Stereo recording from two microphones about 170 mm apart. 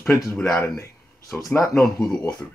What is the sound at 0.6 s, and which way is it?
Speech, 20° left (ahead or behind).